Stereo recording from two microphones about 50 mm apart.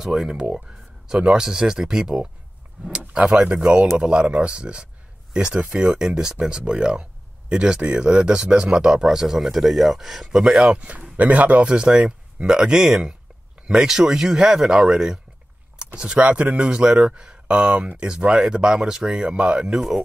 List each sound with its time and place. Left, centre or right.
0.0 s speech: centre
10.6 s speech: right
11.7 s speech: centre
16.2 s speech: right